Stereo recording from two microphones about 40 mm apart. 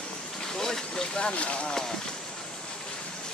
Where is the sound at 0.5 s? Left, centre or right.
Centre.